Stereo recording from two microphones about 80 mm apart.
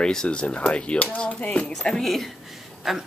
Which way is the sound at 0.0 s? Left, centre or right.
Centre.